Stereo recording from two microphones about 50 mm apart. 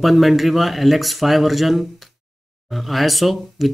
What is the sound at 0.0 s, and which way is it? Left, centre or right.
Speech, centre.